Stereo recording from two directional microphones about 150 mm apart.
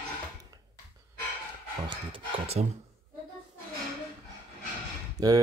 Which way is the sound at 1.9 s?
40° right (ahead or behind).